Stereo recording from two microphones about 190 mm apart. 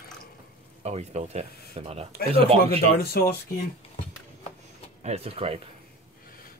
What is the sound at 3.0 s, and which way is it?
Speech, 55° left (ahead or behind).